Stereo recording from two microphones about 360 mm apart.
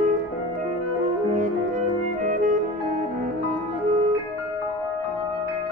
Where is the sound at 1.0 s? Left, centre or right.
Centre.